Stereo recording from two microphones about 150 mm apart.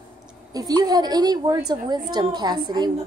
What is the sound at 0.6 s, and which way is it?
A woman's voice, 25° right (ahead or behind).